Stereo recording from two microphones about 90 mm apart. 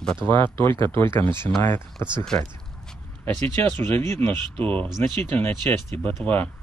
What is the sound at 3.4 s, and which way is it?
Speech, 25° left (ahead or behind).